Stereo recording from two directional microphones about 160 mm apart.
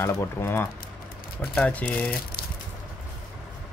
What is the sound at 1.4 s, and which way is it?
Speech, 5° left (ahead or behind).